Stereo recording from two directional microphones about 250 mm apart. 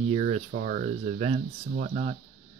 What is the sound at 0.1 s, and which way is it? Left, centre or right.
Speech, right.